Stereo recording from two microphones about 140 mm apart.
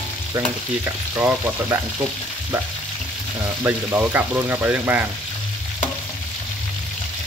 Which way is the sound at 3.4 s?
15° right (ahead or behind).